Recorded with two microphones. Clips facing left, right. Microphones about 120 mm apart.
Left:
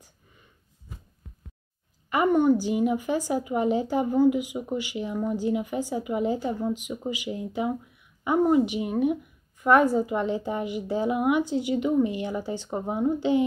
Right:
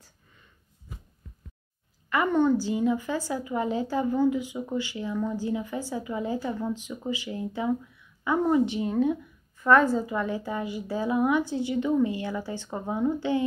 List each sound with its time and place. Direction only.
2.0 s a woman's voice: 15° left (ahead or behind)